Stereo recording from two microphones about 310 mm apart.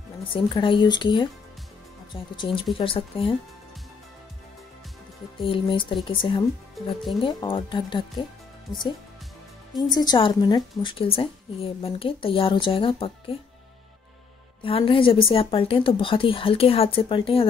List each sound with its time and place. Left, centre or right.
0.2 s a woman's voice: centre
2.3 s a woman's voice: centre
5.4 s a woman's voice: centre
9.9 s a woman's voice: centre
14.6 s a woman's voice: centre